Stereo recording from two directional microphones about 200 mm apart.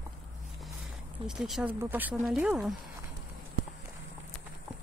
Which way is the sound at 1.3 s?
Centre (ahead or behind).